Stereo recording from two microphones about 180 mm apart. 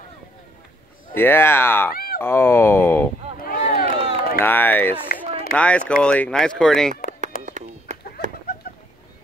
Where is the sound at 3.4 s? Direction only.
55° left (ahead or behind).